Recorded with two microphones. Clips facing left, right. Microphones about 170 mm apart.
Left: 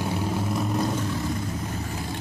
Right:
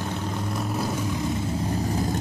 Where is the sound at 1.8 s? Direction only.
40° right (ahead or behind).